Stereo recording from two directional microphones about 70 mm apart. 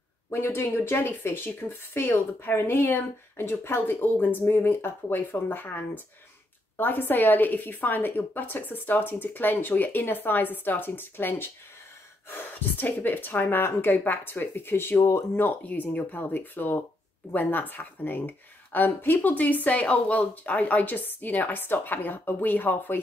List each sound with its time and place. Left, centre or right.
0.3 s speech: left
6.8 s speech: left